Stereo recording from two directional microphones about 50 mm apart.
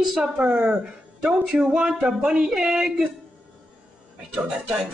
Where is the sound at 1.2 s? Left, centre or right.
Centre.